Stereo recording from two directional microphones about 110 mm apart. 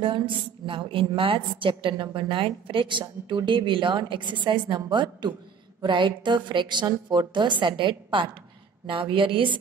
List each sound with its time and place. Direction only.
0.7 s a woman's voice: 50° right (ahead or behind)